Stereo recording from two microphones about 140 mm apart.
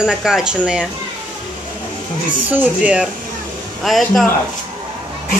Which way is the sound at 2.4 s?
10° right (ahead or behind).